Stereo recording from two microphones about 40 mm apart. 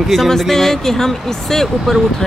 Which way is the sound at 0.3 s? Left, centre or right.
Centre.